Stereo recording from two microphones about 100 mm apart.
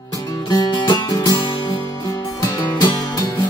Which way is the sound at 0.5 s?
45° left (ahead or behind).